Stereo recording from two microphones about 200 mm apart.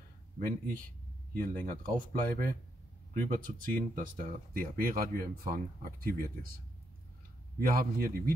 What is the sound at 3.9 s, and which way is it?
Speech, 45° right (ahead or behind).